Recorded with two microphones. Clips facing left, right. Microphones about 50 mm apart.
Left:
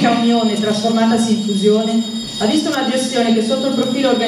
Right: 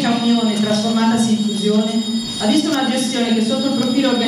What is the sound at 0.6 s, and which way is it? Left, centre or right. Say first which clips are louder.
Speech: left 1 dB; left.